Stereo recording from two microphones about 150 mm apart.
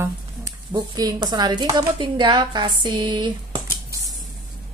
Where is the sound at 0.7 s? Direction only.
30° right (ahead or behind).